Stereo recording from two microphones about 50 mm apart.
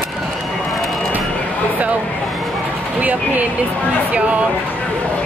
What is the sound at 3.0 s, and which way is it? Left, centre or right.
Speech, right.